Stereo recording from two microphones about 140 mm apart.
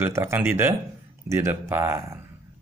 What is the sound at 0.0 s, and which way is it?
A man's voice, 20° right (ahead or behind).